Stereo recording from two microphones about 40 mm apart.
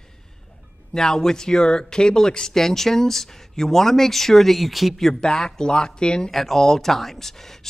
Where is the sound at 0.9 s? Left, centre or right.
Centre.